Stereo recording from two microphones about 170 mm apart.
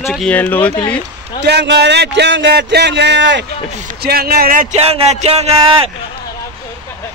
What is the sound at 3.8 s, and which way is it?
Speech, 65° right (ahead or behind).